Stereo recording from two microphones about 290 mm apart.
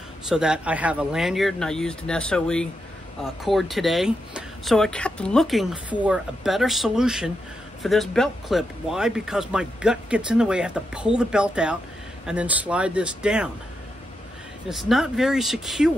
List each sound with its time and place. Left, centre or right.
0.3 s speech: centre
14.7 s speech: centre